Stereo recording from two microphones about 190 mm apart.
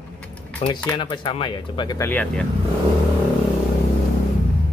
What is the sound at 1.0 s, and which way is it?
Speech, 25° left (ahead or behind).